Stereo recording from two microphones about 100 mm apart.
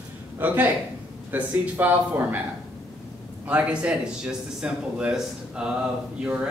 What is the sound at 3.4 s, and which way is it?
A man's voice, 15° right (ahead or behind).